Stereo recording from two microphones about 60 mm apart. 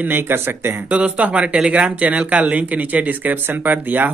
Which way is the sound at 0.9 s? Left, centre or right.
Right.